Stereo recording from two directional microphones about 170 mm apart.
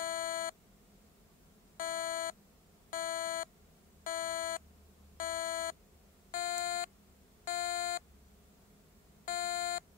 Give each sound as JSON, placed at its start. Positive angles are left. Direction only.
{"t": 0.0, "sound": "beep", "side_deg": 55}
{"t": 1.8, "sound": "beep", "side_deg": 55}
{"t": 9.2, "sound": "beep", "side_deg": 55}